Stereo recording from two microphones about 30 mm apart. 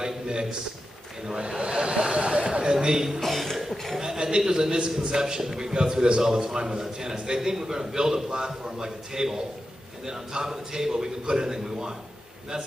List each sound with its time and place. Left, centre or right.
0.0 s a sound: right
1.2 s a man's voice: right
1.7 s vehicle: right
2.1 s a sound: right
3.2 s cough: centre
4.0 s a man's voice: right